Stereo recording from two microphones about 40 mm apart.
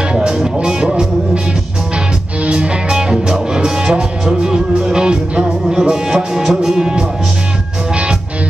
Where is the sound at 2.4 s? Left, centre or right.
Right.